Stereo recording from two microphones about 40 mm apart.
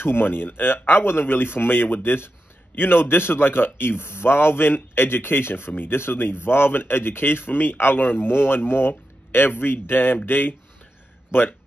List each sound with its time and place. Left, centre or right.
0.0 s a man's voice: left
8.3 s speech: left